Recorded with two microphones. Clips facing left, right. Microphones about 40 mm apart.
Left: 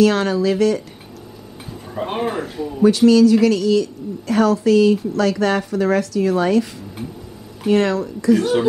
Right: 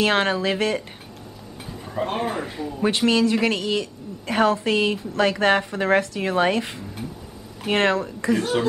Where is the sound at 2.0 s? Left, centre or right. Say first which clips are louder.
Left 4 dB; centre.